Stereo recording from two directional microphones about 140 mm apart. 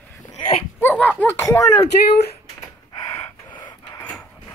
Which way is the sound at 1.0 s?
15° left (ahead or behind).